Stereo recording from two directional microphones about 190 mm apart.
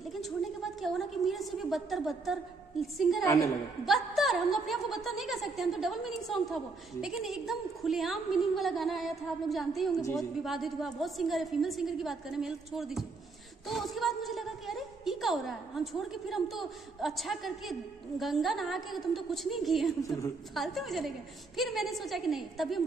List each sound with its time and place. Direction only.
0.1 s a sound: centre (ahead or behind)
3.0 s a woman's voice: centre (ahead or behind)
3.3 s a woman's voice: 15° left (ahead or behind)
3.8 s a woman's voice: centre (ahead or behind)